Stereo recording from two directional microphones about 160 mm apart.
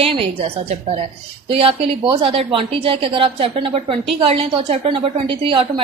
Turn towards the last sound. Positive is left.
turn(degrees=-35)  # may be behind; listen again after turning